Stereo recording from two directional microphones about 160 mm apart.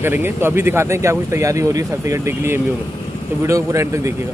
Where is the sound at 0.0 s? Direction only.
15° right (ahead or behind).